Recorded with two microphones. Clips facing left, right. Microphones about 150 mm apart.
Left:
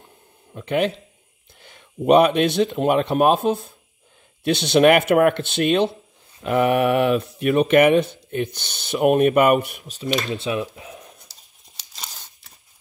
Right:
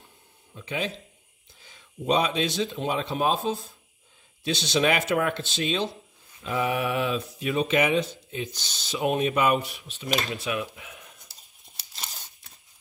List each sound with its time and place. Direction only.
0.5 s speech: 60° left (ahead or behind); by 11.1 s 35° left (ahead or behind)